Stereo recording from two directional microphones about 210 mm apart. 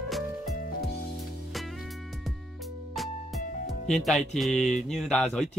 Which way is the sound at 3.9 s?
Centre (ahead or behind).